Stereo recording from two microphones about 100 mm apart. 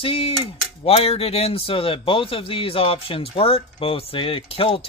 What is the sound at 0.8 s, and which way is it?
A man's voice, 85° left.